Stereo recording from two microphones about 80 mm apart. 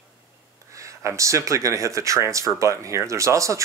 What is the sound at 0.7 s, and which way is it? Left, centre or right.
Speech, right.